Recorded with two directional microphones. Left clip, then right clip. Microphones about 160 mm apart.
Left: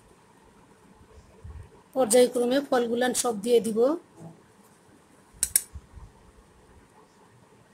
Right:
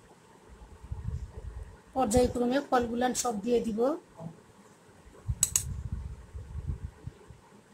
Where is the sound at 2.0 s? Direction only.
55° left (ahead or behind).